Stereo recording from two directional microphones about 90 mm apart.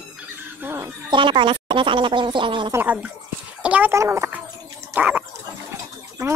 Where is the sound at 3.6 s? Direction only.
15° right (ahead or behind).